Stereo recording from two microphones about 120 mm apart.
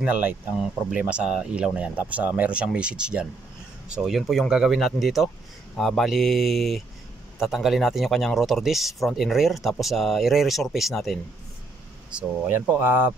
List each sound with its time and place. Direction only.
0.0 s speech: 15° right (ahead or behind)
12.1 s speech: 15° right (ahead or behind)